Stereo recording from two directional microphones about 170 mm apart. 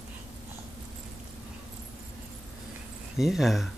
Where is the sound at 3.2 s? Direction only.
Centre (ahead or behind).